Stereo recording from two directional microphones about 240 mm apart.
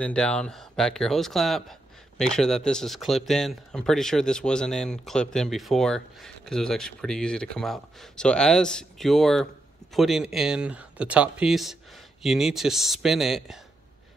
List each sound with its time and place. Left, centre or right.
0.0 s speech: centre